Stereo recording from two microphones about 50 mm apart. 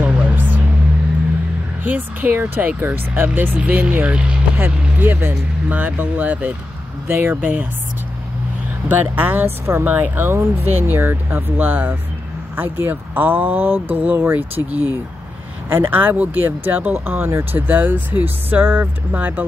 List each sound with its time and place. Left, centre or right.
0.0 s vehicle: right
1.9 s speech: right
4.6 s speech: right
7.1 s speech: right
8.8 s speech: right